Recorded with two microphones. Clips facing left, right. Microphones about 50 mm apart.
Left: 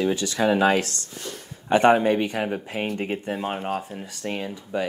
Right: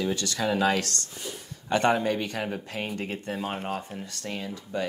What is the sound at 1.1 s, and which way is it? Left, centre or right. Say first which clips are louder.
Speech: left 2 dB; centre.